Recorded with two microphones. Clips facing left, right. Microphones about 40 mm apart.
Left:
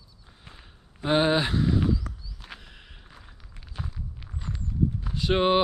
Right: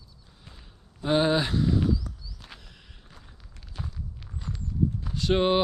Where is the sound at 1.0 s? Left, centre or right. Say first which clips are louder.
Left 1 dB; left.